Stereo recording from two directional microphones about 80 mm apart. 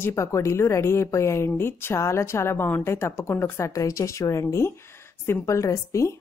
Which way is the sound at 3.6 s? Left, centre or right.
Left.